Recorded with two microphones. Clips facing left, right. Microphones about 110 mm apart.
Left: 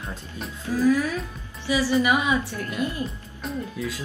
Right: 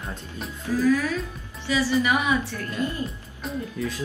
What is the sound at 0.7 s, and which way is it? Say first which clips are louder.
A woman's voice: left 1 dB; 15° left (ahead or behind).